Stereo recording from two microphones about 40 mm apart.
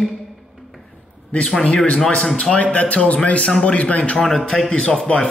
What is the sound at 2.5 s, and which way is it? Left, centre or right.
A man's voice, left.